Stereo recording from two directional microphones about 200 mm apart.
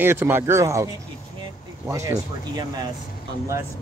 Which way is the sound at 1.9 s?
15° right (ahead or behind).